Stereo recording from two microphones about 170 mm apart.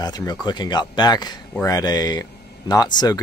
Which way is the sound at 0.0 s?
25° left (ahead or behind).